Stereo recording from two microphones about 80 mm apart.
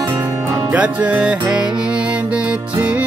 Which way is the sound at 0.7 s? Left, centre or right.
Centre.